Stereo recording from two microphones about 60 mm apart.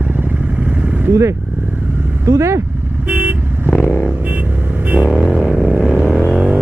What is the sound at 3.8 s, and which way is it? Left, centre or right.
Vehicle, left.